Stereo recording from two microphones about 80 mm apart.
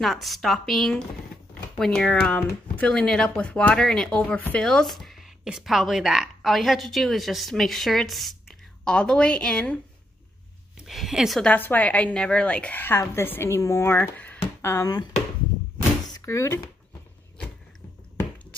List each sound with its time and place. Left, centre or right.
0.0 s a woman's voice: centre
4.4 s speech: left
4.6 s a sound: centre
5.6 s a woman's voice: centre
10.9 s a woman's voice: centre
11.5 s a woman's voice: left
14.1 s a sound: centre
14.7 s speech: left
16.1 s speech: left